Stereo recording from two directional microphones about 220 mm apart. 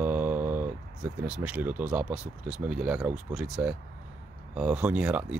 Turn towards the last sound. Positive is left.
turn(degrees=-5)  # may be behind; listen again after turning